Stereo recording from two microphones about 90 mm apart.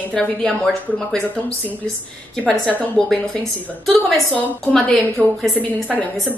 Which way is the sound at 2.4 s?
10° left (ahead or behind).